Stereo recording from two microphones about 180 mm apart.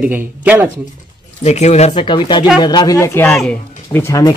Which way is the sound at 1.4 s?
40° left (ahead or behind).